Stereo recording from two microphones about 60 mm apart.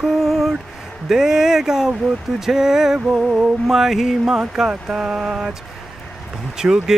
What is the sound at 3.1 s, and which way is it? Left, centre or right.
Music, right.